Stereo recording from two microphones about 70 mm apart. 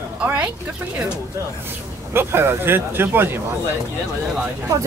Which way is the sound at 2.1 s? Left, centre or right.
Right.